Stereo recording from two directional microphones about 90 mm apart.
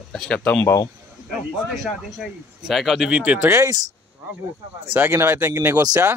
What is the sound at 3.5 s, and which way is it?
Speech, 30° right (ahead or behind).